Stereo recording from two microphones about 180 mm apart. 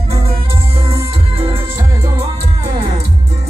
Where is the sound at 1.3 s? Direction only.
30° right (ahead or behind).